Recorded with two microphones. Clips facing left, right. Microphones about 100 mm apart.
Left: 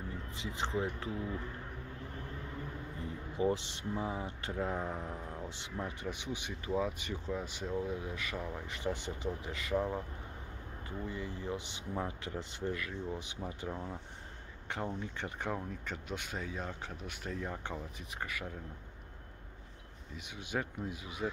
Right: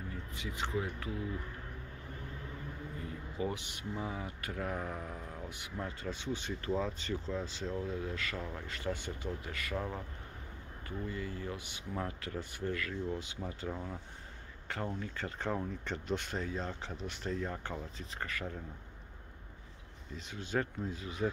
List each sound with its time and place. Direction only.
0.3 s speech: 25° left (ahead or behind)
3.3 s speech: 25° left (ahead or behind)
13.7 s speech: 5° left (ahead or behind)
15.0 s speech: 15° left (ahead or behind)
15.5 s speech: centre (ahead or behind)
20.2 s speech: 15° left (ahead or behind)